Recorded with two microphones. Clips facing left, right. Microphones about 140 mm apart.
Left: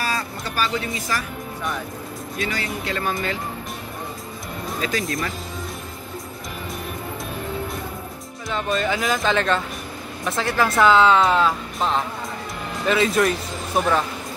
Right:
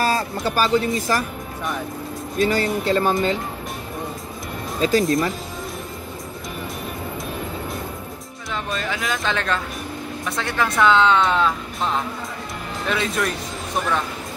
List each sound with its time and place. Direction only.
0.0 s speech: 35° right (ahead or behind)
2.4 s speech: 35° right (ahead or behind)
4.8 s speech: 30° right (ahead or behind)
8.5 s speech: centre (ahead or behind)